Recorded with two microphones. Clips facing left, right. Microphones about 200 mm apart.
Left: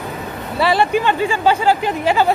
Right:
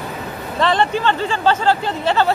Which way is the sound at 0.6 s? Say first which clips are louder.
Left 2 dB; 10° left (ahead or behind).